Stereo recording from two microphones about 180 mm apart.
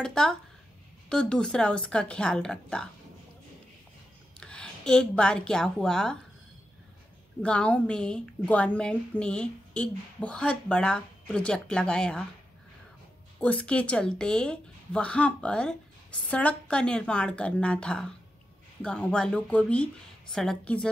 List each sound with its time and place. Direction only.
0.0 s a woman's voice: 5° left (ahead or behind)
4.4 s a woman's voice: 5° left (ahead or behind)
7.4 s a woman's voice: 5° left (ahead or behind)
13.4 s a woman's voice: 5° left (ahead or behind)